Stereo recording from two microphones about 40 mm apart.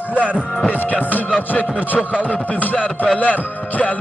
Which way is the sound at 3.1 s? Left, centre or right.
Left.